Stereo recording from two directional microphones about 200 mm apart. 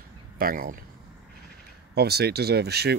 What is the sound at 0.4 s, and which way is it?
Speech, 45° right (ahead or behind).